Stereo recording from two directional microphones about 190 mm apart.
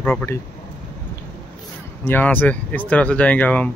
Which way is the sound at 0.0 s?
10° left (ahead or behind).